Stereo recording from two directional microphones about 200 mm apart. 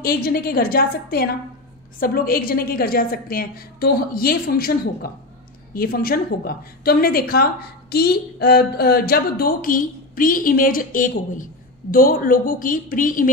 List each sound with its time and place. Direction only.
0.0 s a woman's voice: 50° left (ahead or behind)